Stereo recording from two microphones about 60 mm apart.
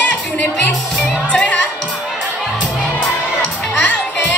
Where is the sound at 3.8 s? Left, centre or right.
Left.